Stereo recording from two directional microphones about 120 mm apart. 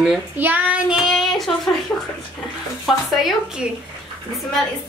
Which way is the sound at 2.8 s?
Centre (ahead or behind).